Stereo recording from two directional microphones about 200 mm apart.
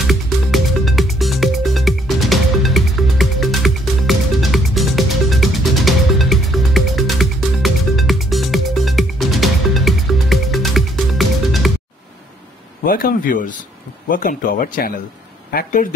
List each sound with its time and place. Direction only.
0.0 s music: centre (ahead or behind)
12.8 s a sound: 45° left (ahead or behind)
14.0 s speech: 45° left (ahead or behind)